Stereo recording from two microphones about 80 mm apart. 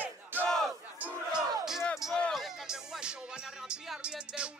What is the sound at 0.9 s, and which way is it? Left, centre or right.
Crowd, centre.